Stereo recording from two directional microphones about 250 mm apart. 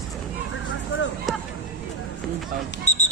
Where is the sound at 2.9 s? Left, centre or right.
Left.